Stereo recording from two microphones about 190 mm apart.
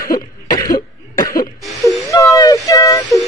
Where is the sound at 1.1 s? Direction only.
50° left (ahead or behind).